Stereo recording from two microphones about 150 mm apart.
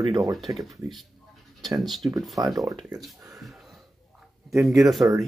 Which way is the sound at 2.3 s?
25° right (ahead or behind).